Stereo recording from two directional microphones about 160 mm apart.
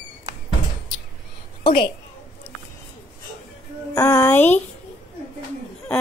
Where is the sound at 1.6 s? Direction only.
35° left (ahead or behind).